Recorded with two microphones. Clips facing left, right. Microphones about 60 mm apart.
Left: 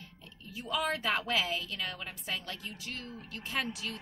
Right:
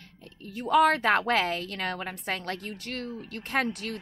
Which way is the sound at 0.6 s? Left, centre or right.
Right.